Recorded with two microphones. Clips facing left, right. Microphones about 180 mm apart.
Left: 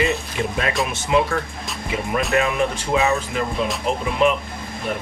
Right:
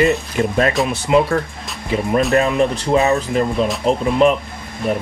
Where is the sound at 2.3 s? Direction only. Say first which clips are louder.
Right 2 dB; 35° right (ahead or behind).